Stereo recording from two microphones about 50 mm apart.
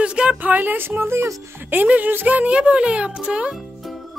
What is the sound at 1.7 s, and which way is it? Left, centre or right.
Speech, right.